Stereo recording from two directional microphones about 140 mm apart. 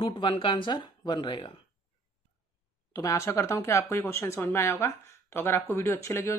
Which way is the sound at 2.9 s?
25° left (ahead or behind).